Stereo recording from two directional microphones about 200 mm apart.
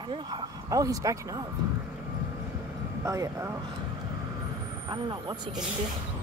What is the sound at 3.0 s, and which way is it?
Speech, 15° right (ahead or behind).